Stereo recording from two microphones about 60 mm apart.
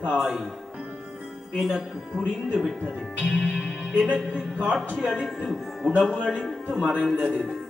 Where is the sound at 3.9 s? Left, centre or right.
Centre.